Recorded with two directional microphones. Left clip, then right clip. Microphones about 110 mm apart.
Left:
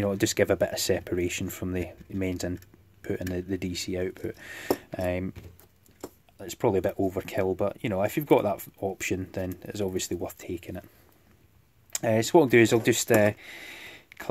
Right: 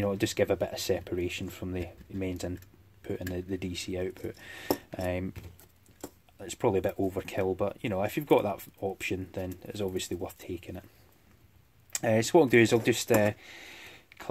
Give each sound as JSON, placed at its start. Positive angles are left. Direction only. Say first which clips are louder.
{"t": 0.0, "sound": "speech", "louder": "left 3 dB", "side_deg": 25}
{"t": 6.3, "sound": "speech", "louder": "left 2 dB", "side_deg": 15}
{"t": 11.9, "sound": "speech", "louder": "left 2 dB", "side_deg": 5}